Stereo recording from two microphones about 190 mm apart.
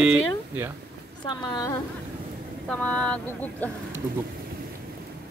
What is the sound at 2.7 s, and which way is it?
Speech, 5° left (ahead or behind).